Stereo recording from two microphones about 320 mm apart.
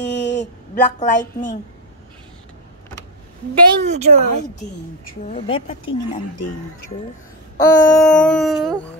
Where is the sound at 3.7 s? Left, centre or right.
Right.